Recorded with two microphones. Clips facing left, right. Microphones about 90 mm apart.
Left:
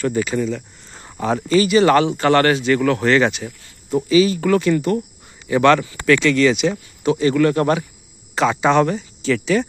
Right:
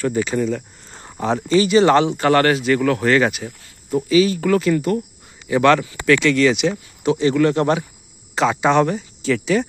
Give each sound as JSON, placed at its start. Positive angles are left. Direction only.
{"t": 0.2, "sound": "speech", "side_deg": -40}
{"t": 1.2, "sound": "speech", "side_deg": -20}